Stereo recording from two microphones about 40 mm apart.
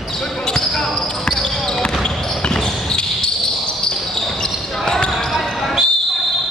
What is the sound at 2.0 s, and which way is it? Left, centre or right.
Basketball bounce, centre.